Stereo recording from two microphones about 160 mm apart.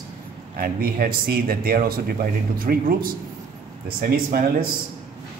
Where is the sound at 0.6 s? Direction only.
70° right (ahead or behind).